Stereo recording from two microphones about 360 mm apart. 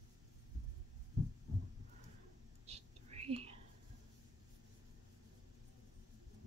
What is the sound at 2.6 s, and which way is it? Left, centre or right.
Whispering, centre.